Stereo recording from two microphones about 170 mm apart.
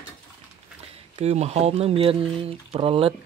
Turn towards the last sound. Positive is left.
turn(degrees=-35)  # may be behind; listen again after turning